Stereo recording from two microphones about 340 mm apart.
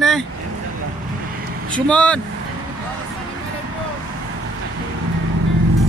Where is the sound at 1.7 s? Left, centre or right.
Centre.